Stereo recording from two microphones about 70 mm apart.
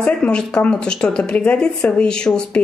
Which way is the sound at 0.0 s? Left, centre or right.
Centre.